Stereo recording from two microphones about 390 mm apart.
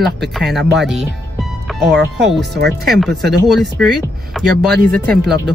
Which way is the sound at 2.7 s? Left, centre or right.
Centre.